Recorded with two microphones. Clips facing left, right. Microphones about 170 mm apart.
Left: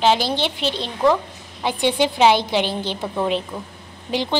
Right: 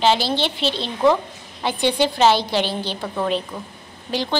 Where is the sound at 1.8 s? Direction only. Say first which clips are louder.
Left 1 dB; 15° left (ahead or behind).